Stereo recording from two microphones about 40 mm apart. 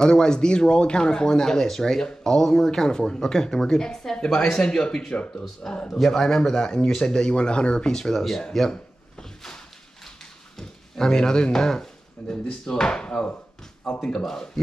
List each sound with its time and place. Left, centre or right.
0.0 s speech: centre
5.9 s speech: centre
10.6 s speech: centre
14.2 s speech: centre